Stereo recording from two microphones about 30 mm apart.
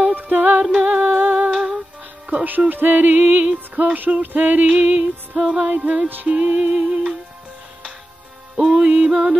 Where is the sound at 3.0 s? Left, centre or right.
Right.